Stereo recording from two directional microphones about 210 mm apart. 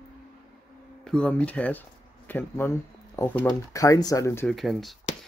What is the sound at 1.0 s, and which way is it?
Speech, 5° left (ahead or behind).